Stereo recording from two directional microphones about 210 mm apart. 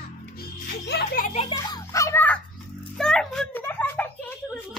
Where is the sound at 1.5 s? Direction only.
15° left (ahead or behind).